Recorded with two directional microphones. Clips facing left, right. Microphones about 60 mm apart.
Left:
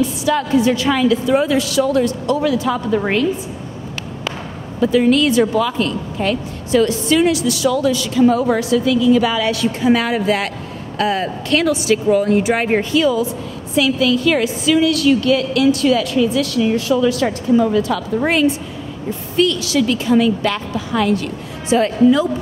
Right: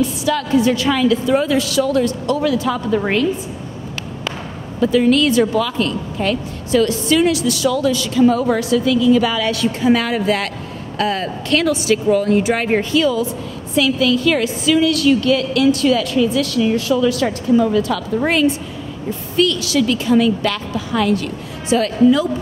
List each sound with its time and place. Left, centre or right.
0.2 s speech: left
4.7 s speech: centre
17.8 s a woman's voice: centre